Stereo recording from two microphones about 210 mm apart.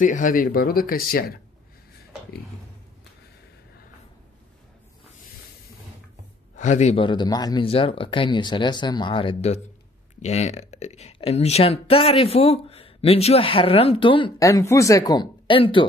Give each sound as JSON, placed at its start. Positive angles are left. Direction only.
{"t": 0.0, "sound": "speech", "side_deg": 40}
{"t": 6.5, "sound": "speech", "side_deg": 35}